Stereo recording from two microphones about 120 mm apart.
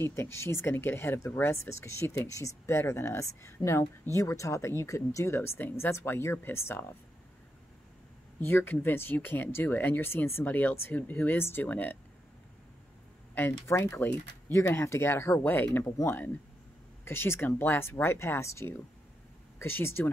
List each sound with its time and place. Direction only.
0.0 s speech: 20° left (ahead or behind)
8.5 s speech: 15° left (ahead or behind)
13.3 s speech: 20° left (ahead or behind)